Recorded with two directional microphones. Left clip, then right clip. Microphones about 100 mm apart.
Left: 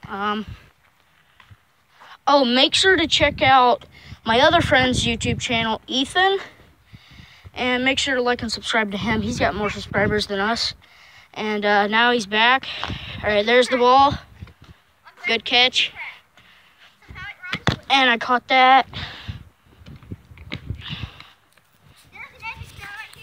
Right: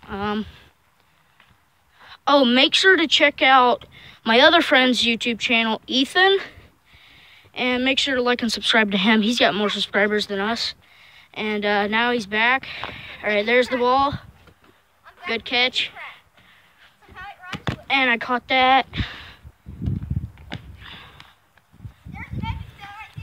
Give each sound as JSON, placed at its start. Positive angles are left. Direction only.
{"t": 0.1, "sound": "speech", "side_deg": -45}
{"t": 2.0, "sound": "a sound", "side_deg": -35}
{"t": 2.5, "sound": "speech", "side_deg": -25}
{"t": 4.2, "sound": "speech", "side_deg": -45}
{"t": 7.0, "sound": "a sound", "side_deg": -5}
{"t": 7.5, "sound": "speech", "side_deg": -20}
{"t": 8.4, "sound": "speech", "side_deg": -55}
{"t": 10.1, "sound": "speech", "side_deg": -5}
{"t": 11.0, "sound": "speech", "side_deg": 5}
{"t": 15.2, "sound": "speech", "side_deg": 15}
{"t": 18.0, "sound": "speech", "side_deg": 0}
{"t": 18.7, "sound": "speech", "side_deg": -15}
{"t": 20.3, "sound": "a sound", "side_deg": -30}
{"t": 20.8, "sound": "a sound", "side_deg": 5}